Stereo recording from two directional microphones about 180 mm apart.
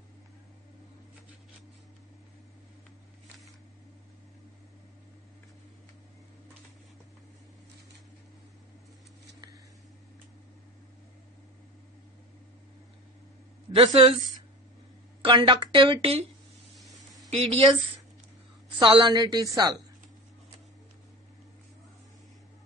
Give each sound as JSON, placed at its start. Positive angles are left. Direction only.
{"t": 13.7, "sound": "a woman's voice", "side_deg": -30}
{"t": 15.2, "sound": "a woman's voice", "side_deg": -25}
{"t": 16.7, "sound": "snake", "side_deg": 0}
{"t": 17.3, "sound": "speech", "side_deg": -35}
{"t": 18.8, "sound": "a woman's voice", "side_deg": -25}